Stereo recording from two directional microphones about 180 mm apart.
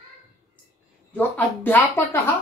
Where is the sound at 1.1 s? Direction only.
10° left (ahead or behind).